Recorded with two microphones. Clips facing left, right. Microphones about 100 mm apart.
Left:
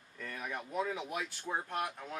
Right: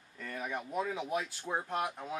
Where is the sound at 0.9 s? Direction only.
15° right (ahead or behind).